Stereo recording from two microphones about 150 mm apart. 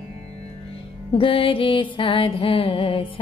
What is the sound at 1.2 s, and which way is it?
Music, 35° left (ahead or behind).